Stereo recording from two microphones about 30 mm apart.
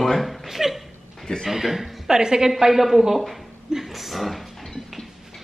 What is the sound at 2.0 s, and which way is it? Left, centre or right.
Speech, right.